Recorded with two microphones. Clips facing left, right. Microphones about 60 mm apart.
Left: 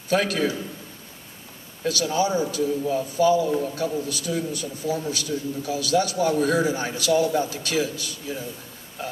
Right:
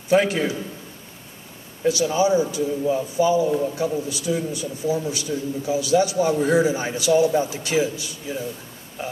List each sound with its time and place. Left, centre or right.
0.1 s a man's voice: centre
1.8 s a man's voice: centre